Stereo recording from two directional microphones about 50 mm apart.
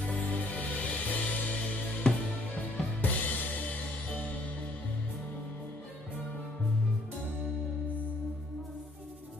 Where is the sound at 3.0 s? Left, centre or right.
Left.